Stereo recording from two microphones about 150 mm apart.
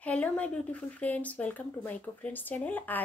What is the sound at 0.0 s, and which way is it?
Speech, 10° left (ahead or behind).